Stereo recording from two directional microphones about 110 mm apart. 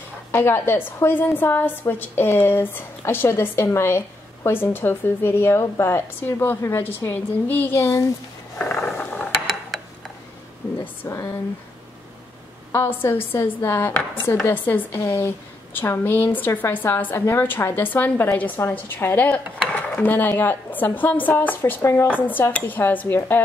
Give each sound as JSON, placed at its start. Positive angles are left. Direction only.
{"t": 0.3, "sound": "a woman's voice", "side_deg": 20}
{"t": 8.5, "sound": "mechanisms", "side_deg": 20}
{"t": 9.1, "sound": "mechanisms", "side_deg": 0}
{"t": 11.1, "sound": "a woman's voice", "side_deg": 25}
{"t": 12.7, "sound": "a woman's voice", "side_deg": 20}